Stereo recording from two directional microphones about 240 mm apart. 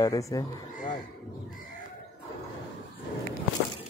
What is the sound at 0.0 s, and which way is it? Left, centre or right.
Speech, centre.